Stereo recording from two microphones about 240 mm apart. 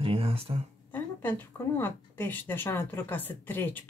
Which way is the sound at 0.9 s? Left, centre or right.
Centre.